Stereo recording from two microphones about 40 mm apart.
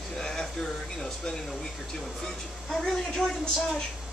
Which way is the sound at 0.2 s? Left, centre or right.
Centre.